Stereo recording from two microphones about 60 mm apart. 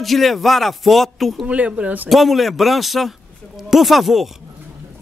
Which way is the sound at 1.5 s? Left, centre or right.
Right.